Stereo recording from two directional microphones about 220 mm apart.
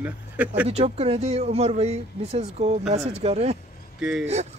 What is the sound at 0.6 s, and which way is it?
Speech, 25° right (ahead or behind).